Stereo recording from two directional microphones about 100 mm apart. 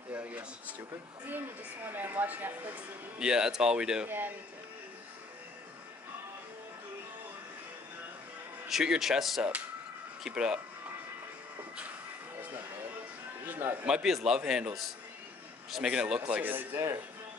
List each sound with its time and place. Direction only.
0.1 s a sound: 15° right (ahead or behind)
1.9 s speech: 20° right (ahead or behind)
8.6 s speech: 5° right (ahead or behind)
13.5 s a man's voice: 20° right (ahead or behind)
13.8 s speech: 5° right (ahead or behind)
15.7 s speech: 10° right (ahead or behind)